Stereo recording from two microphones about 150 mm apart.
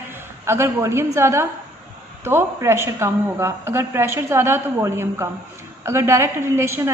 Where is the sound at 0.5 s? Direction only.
15° right (ahead or behind).